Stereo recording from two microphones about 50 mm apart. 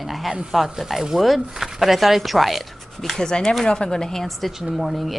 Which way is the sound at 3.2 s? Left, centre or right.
Centre.